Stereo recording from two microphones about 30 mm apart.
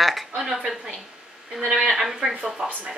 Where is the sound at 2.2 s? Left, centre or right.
Right.